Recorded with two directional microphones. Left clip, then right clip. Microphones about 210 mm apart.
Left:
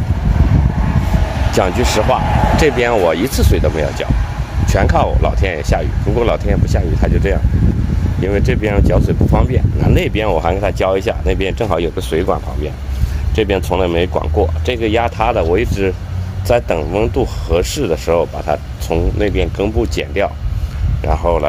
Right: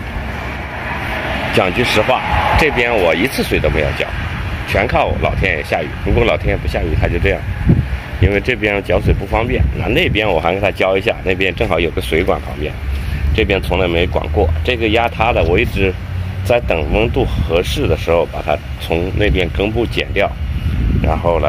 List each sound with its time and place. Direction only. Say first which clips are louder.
1.6 s speech: even; 10° left (ahead or behind)
13.4 s speech: even; 15° left (ahead or behind)